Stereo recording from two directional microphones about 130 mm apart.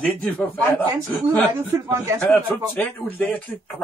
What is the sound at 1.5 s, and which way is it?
Speech, 20° right (ahead or behind).